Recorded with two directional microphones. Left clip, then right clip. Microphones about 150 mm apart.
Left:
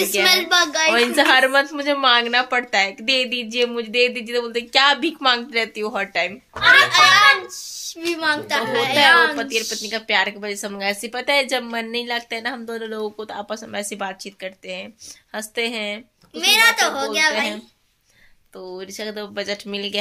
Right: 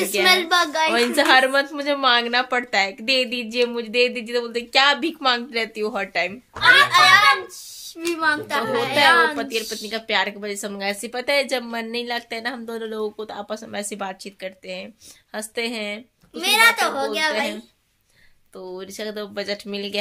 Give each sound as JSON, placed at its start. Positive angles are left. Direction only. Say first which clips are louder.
{"t": 0.2, "sound": "speech", "louder": "even", "side_deg": -45}
{"t": 0.9, "sound": "a woman's voice", "louder": "even", "side_deg": 0}
{"t": 6.9, "sound": "a child's voice", "louder": "left 1 dB", "side_deg": -50}
{"t": 9.4, "sound": "a woman's voice", "louder": "left 3 dB", "side_deg": -5}
{"t": 16.3, "sound": "a child's voice", "louder": "left 1 dB", "side_deg": -45}
{"t": 18.6, "sound": "a woman's voice", "louder": "left 1 dB", "side_deg": -10}